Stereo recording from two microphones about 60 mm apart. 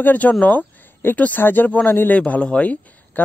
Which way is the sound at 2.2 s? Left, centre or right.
Left.